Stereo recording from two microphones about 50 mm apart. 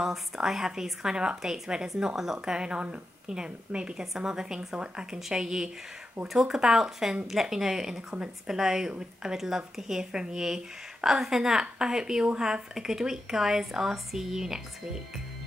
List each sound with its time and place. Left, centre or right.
0.0 s speech: centre